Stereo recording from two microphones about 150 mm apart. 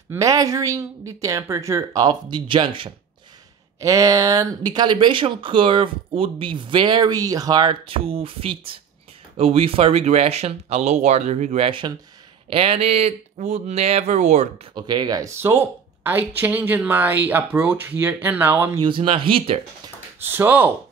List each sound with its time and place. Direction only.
0.1 s a woman's voice: 25° right (ahead or behind)
3.8 s speech: 20° right (ahead or behind); by 14.5 s 50° right (ahead or behind)
14.7 s speech: 30° right (ahead or behind)
18.8 s speech: 35° right (ahead or behind)
20.2 s speech: 15° right (ahead or behind)